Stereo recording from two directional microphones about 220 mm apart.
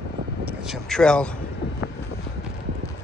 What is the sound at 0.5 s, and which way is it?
Speech, centre (ahead or behind).